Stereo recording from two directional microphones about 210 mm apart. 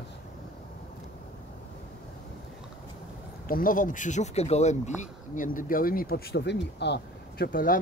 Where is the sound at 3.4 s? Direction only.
40° left (ahead or behind).